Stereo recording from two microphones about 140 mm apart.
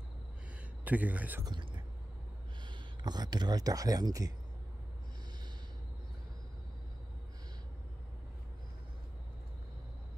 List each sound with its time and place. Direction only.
0.8 s speech: 10° right (ahead or behind)
1.4 s speech: 35° right (ahead or behind)